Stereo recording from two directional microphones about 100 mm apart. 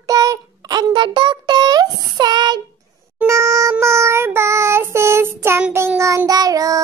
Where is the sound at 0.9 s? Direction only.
55° right (ahead or behind).